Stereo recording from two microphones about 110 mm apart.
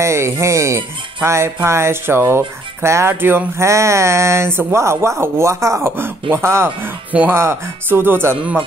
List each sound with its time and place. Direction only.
0.0 s speech: 25° right (ahead or behind)